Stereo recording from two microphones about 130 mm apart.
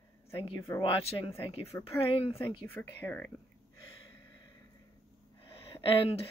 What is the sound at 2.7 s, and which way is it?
Speech, 15° left (ahead or behind).